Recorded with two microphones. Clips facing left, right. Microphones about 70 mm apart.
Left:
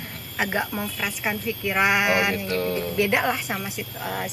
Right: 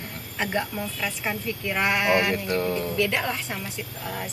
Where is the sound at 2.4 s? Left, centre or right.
Right.